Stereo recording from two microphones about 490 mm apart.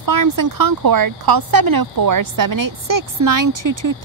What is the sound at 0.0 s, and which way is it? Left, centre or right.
Speech, right.